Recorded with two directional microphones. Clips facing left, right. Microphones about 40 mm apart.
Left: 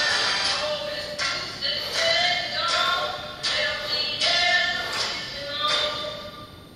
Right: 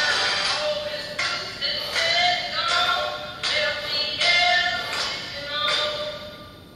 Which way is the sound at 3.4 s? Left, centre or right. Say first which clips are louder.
Right 2 dB; right.